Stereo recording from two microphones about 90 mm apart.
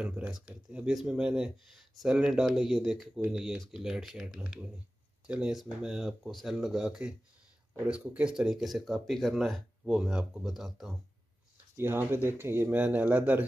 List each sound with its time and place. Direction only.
0.0 s speech: 15° right (ahead or behind)
11.7 s speech: 25° right (ahead or behind)